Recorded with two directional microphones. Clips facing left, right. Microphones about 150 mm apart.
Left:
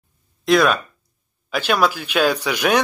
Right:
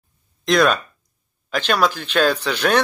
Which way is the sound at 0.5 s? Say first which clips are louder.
Left 1 dB; 5° left (ahead or behind).